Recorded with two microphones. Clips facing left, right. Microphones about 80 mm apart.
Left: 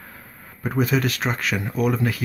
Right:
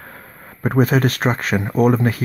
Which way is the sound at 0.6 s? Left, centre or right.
Right.